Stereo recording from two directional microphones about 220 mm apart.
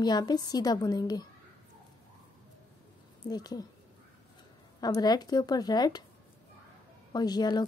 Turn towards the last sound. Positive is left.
turn(degrees=20)  # may be behind; listen again after turning